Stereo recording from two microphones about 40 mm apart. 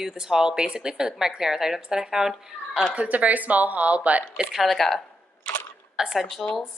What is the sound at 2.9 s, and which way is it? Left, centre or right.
A woman's voice, right.